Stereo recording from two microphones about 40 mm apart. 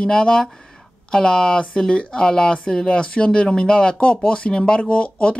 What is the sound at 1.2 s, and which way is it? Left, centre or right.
Speech, left.